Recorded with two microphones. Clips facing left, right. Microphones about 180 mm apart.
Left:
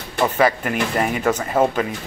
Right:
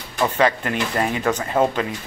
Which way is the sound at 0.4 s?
10° left (ahead or behind).